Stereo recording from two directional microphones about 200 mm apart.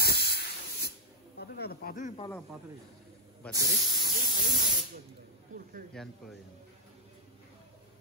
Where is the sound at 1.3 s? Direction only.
55° left (ahead or behind).